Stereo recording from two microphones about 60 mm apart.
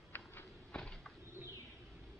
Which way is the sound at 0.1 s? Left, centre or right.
Left.